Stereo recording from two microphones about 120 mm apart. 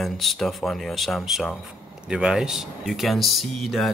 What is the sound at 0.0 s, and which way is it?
Speech, centre (ahead or behind).